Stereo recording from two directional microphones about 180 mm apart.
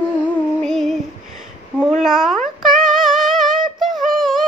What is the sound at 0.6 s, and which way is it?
Female singing, centre (ahead or behind).